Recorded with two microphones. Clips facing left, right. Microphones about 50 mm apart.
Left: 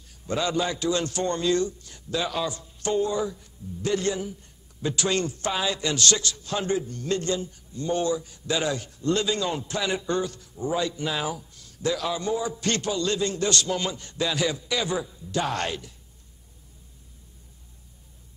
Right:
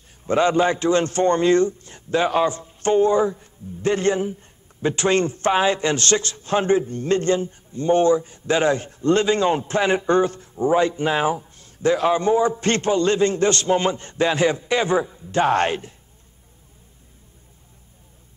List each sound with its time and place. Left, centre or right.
0.3 s a man's voice: right